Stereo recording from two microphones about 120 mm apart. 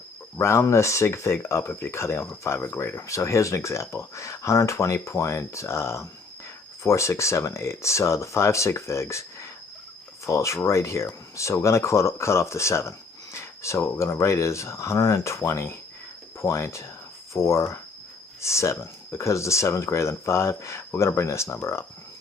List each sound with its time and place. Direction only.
0.4 s speech: 25° left (ahead or behind)